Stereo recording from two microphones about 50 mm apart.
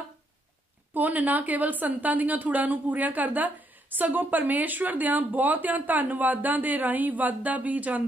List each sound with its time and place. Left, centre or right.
0.9 s a woman's voice: right